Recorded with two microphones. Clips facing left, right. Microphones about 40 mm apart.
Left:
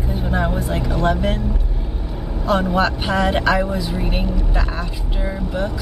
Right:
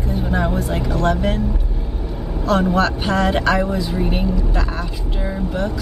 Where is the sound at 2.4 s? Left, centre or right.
Centre.